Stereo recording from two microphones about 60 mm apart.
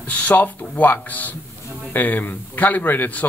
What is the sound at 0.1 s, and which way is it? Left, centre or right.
A man's voice, left.